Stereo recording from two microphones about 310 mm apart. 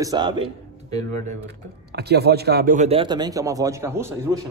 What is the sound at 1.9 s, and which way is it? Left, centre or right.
A man's voice, right.